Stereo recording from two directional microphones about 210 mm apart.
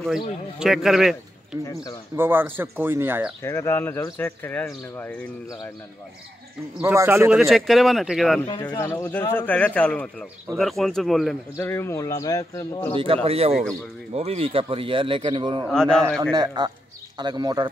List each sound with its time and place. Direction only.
0.6 s a man's voice: centre (ahead or behind)
3.4 s speech: 10° left (ahead or behind)
6.8 s speech: 10° right (ahead or behind)
8.6 s speech: 10° left (ahead or behind)
11.5 s speech: 10° left (ahead or behind)
12.9 s a man's voice: 25° right (ahead or behind)
15.7 s speech: 5° left (ahead or behind)
16.3 s a man's voice: 20° right (ahead or behind)